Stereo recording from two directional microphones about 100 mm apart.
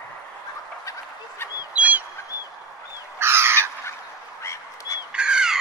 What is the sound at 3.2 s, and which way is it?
Crow, 25° right (ahead or behind).